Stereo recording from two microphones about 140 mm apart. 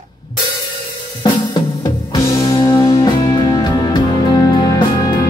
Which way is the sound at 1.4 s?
25° left (ahead or behind).